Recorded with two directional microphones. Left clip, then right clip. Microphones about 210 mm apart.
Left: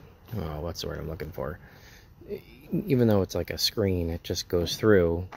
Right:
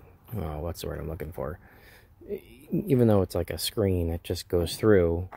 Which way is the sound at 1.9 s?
20° right (ahead or behind).